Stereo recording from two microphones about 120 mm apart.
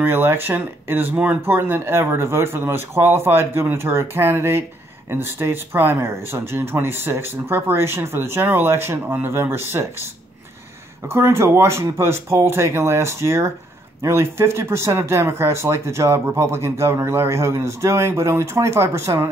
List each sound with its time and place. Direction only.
0.0 s speech: 20° right (ahead or behind)
11.1 s speech: 20° right (ahead or behind)